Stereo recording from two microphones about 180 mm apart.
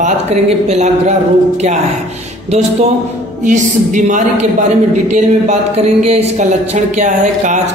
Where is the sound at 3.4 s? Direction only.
45° right (ahead or behind).